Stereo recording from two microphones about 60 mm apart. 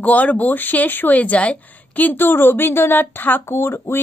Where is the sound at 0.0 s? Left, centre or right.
Left.